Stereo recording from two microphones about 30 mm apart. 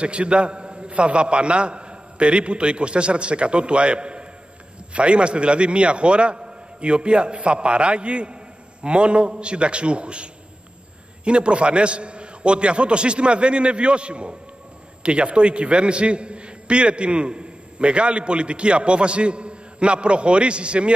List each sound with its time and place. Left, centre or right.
0.0 s a man's voice: right